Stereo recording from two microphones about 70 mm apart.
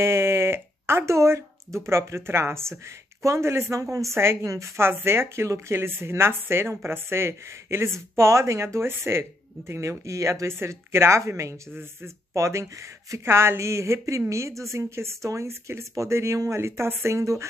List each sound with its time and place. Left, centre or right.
0.0 s a woman's voice: right